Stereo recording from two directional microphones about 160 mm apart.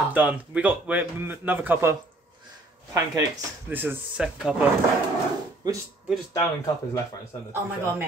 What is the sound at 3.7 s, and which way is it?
Speech, 10° right (ahead or behind).